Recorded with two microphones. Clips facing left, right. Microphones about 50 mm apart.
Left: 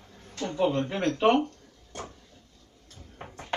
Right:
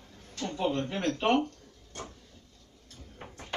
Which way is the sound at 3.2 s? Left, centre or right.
Centre.